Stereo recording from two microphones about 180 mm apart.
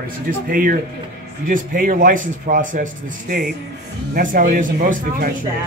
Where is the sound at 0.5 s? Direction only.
50° right (ahead or behind).